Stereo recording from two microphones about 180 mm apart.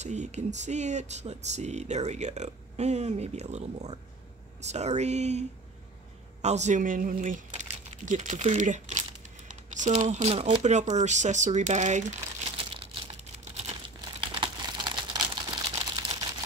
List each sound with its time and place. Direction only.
0.0 s speech: 40° right (ahead or behind)
6.4 s speech: 40° right (ahead or behind)
13.6 s crumpling: 30° right (ahead or behind)
15.7 s a sound: 35° right (ahead or behind)